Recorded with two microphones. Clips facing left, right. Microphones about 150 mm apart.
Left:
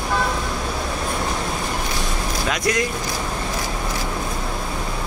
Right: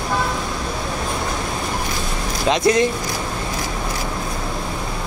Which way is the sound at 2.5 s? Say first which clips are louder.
Right 7 dB; 25° right (ahead or behind).